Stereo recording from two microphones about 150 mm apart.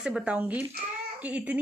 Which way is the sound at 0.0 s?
5° right (ahead or behind).